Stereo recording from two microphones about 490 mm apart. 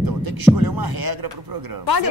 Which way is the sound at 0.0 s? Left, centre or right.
Right.